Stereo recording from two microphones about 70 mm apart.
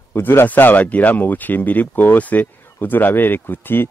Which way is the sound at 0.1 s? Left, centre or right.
Left.